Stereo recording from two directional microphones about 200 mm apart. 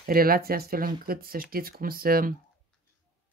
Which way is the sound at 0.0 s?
45° right (ahead or behind).